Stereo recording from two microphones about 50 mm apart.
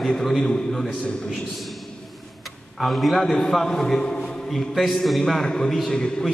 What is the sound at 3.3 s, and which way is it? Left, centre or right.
A man's voice, centre.